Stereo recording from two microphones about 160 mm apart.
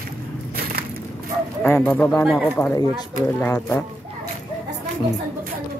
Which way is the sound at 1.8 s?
10° left (ahead or behind).